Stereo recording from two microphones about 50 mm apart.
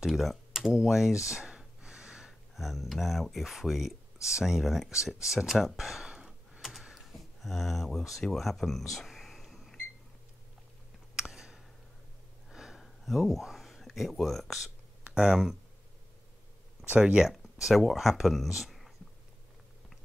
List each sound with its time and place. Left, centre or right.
0.0 s computer keyboard: centre
2.5 s speech: centre
6.0 s a sound: centre
8.3 s cash register: centre
11.1 s a sound: centre
12.8 s speech: centre
15.1 s speech: centre
16.9 s speech: centre
17.3 s speech: centre